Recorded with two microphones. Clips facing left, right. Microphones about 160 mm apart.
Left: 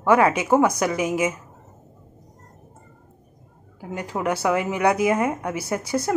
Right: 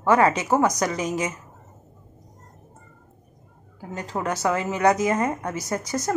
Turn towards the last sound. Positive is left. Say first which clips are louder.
# left 2 dB
turn(degrees=10)  # may be behind; listen again after turning